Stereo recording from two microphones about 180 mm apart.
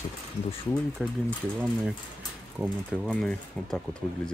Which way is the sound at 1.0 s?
Centre (ahead or behind).